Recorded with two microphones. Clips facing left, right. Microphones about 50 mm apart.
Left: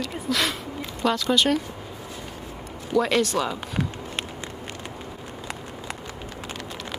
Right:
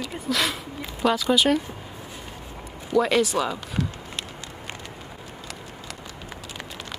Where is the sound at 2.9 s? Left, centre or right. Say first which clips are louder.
Right 1 dB; centre.